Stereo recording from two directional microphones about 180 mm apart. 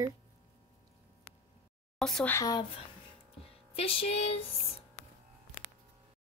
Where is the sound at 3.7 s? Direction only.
30° left (ahead or behind).